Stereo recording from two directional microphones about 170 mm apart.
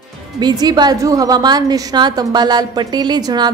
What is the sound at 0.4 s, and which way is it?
A woman's voice, 25° right (ahead or behind).